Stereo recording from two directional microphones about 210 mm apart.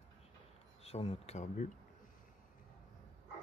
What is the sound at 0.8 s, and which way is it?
Speech, 30° left (ahead or behind).